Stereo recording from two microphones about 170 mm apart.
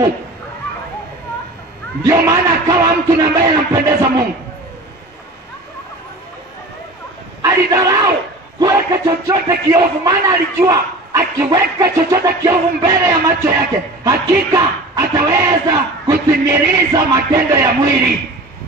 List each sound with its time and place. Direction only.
2.0 s a man's voice: 20° right (ahead or behind)
7.4 s a man's voice: 20° right (ahead or behind)